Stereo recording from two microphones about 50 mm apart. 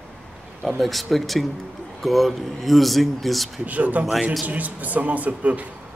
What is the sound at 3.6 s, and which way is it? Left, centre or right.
Speech, right.